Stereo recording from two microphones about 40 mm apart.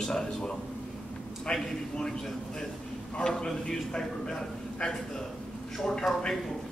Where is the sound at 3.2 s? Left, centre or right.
Centre.